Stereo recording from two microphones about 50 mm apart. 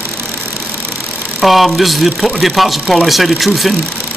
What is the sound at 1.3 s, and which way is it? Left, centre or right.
Speech, centre.